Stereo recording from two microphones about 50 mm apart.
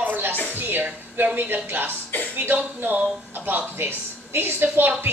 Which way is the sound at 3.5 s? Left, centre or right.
Right.